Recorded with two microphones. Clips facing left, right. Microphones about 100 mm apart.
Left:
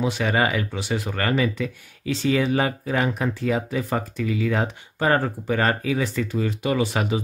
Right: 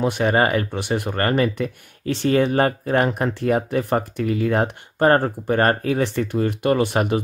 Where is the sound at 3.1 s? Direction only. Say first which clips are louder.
Right 3 dB; 60° right (ahead or behind).